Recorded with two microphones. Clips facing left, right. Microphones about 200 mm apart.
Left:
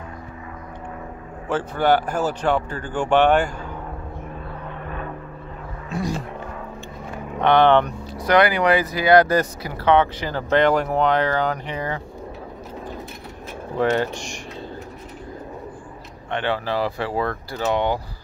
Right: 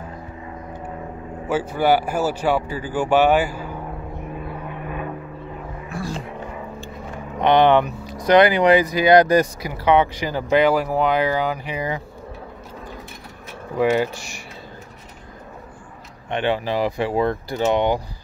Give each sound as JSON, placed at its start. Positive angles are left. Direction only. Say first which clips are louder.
{"t": 1.5, "sound": "speech", "louder": "right 1 dB", "side_deg": -10}
{"t": 4.6, "sound": "vehicle", "louder": "right 2 dB", "side_deg": -10}
{"t": 5.9, "sound": "a sound", "louder": "left 4 dB", "side_deg": 20}
{"t": 7.3, "sound": "speech", "louder": "right 1 dB", "side_deg": -15}
{"t": 13.7, "sound": "speech", "louder": "right 2 dB", "side_deg": -5}
{"t": 16.3, "sound": "speech", "louder": "right 2 dB", "side_deg": -15}